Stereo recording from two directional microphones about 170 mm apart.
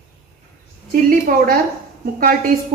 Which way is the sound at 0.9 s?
55° right (ahead or behind).